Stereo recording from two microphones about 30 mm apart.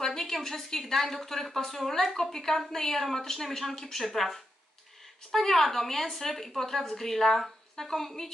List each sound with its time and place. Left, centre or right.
0.0 s a woman's voice: centre